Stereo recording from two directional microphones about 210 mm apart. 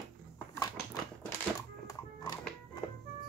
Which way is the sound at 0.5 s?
15° left (ahead or behind).